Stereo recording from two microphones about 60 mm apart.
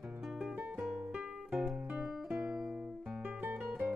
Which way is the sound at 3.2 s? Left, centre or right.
Right.